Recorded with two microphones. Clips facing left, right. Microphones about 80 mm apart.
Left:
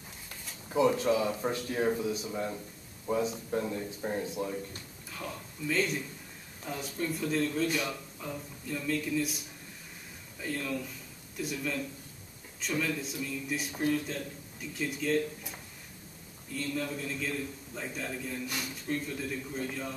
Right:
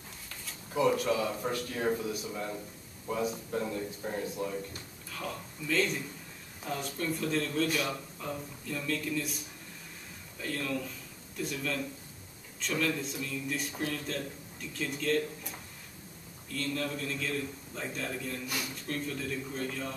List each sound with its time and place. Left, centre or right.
0.7 s a man's voice: left; by 9.4 s centre
10.4 s a man's voice: centre
16.5 s a man's voice: centre